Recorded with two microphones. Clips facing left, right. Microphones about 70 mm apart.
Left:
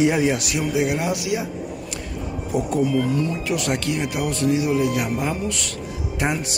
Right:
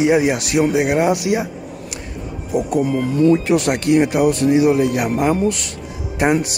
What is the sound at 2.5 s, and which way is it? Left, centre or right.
Speech, centre.